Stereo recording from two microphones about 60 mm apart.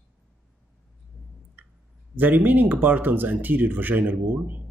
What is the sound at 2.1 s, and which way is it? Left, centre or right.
Speech, right.